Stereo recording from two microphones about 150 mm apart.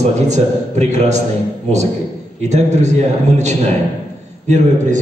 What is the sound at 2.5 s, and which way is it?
A man's voice, 50° right (ahead or behind).